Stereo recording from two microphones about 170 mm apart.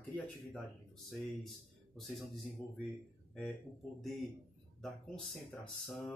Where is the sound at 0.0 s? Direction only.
10° left (ahead or behind).